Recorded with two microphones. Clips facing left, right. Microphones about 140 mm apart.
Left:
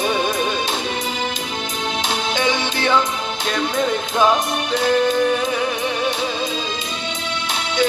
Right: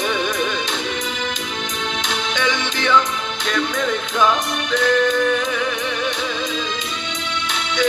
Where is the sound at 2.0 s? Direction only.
35° left (ahead or behind).